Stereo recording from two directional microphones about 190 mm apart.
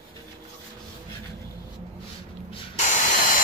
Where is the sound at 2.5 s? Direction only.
40° left (ahead or behind).